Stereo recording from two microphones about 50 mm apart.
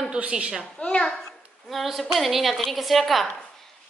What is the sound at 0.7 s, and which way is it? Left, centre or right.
Speech, centre.